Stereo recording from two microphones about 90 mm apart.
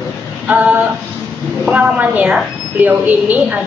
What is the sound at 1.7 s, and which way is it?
A woman's voice, 15° right (ahead or behind).